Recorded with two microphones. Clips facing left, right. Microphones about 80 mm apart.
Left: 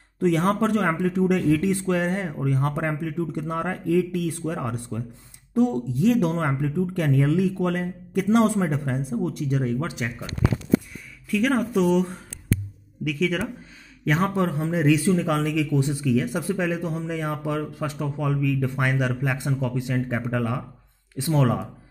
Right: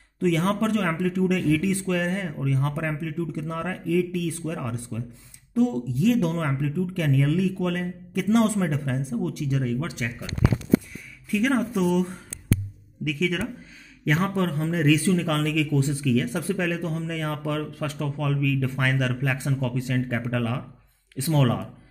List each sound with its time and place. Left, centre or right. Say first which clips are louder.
0.2 s a man's voice: left 2 dB; left
11.5 s speech: left 2 dB; centre
13.1 s speech: left 1 dB; centre